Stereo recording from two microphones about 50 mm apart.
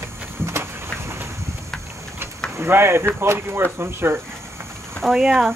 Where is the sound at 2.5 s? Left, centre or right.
Right.